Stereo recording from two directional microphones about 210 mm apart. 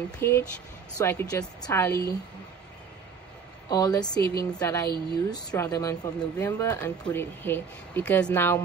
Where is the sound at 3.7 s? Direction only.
20° left (ahead or behind).